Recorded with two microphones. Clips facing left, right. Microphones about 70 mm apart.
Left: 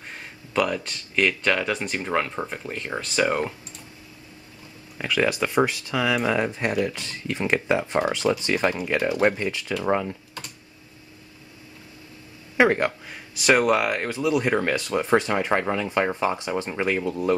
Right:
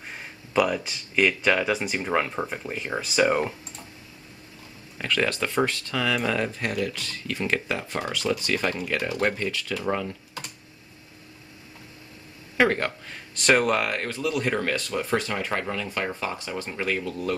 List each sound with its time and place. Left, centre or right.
0.1 s speech: centre
4.9 s speech: centre
12.5 s speech: centre